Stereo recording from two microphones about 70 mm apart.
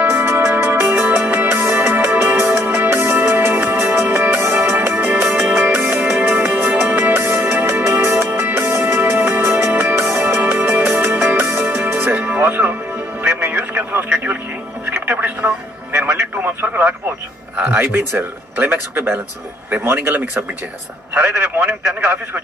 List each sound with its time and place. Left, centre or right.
0.1 s music: right
13.2 s radio: right
14.9 s music: right
16.3 s radio: right
17.7 s a man's voice: right